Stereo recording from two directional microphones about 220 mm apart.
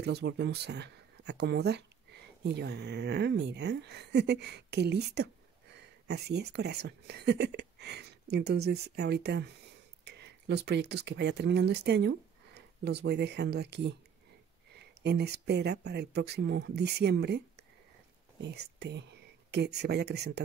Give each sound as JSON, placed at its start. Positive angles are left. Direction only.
{"t": 0.0, "sound": "speech", "side_deg": -50}
{"t": 15.0, "sound": "speech", "side_deg": -50}